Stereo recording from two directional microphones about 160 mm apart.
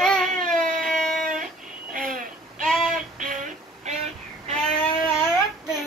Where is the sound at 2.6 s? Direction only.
Centre (ahead or behind).